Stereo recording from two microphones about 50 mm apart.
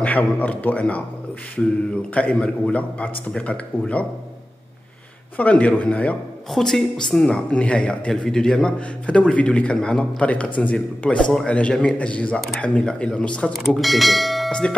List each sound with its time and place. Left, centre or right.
0.0 s a man's voice: left
2.3 s speech: centre
2.7 s a man's voice: left
5.4 s a man's voice: left
6.5 s speech: centre
7.3 s a man's voice: left
8.1 s a man's voice: centre
9.8 s a man's voice: centre
13.7 s speech: centre